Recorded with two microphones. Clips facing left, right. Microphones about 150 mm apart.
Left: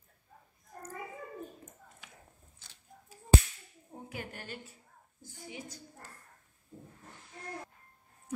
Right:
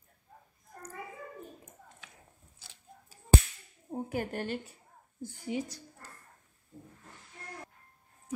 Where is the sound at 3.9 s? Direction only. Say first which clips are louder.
Right 9 dB; 45° right (ahead or behind).